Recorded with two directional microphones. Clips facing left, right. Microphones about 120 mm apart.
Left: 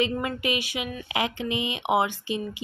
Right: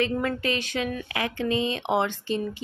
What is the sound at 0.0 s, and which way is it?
A woman's voice, 15° left (ahead or behind).